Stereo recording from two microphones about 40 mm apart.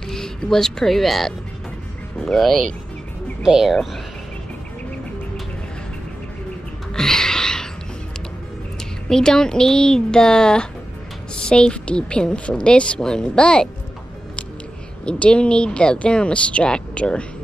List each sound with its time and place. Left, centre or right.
0.1 s speech: centre
3.4 s speech: centre
7.0 s a sound: centre
9.1 s a woman's voice: centre
15.0 s a woman's voice: left